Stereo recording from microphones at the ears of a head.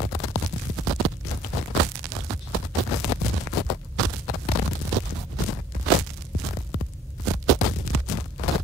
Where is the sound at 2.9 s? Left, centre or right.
Left.